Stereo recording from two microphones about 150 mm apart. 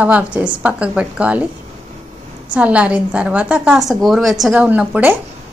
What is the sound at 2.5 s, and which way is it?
A woman's voice, 10° right (ahead or behind).